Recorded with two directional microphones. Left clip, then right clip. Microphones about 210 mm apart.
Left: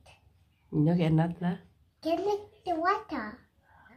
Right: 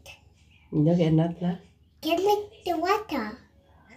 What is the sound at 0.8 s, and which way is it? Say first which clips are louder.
Speech: right 5 dB; 20° left (ahead or behind).